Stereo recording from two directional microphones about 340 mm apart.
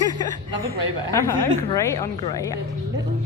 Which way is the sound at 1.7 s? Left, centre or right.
Centre.